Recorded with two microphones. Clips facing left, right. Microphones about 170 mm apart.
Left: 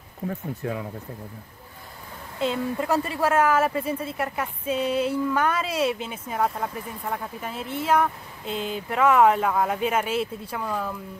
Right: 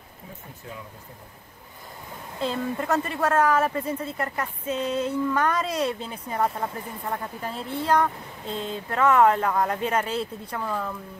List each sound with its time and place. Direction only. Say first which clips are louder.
0.3 s speech: left 11 dB; 65° left (ahead or behind)
2.5 s speech: even; 20° left (ahead or behind)
3.2 s a woman's voice: left 1 dB; 5° left (ahead or behind)
8.5 s a sound: left 2 dB; 30° right (ahead or behind)
8.9 s a woman's voice: left 1 dB; 10° left (ahead or behind)